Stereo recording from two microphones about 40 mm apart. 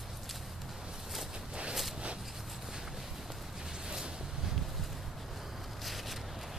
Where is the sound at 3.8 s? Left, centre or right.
Right.